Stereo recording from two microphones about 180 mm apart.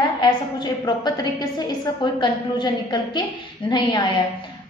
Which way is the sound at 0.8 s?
25° left (ahead or behind).